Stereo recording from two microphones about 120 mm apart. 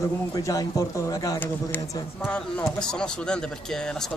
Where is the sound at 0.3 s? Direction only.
30° left (ahead or behind).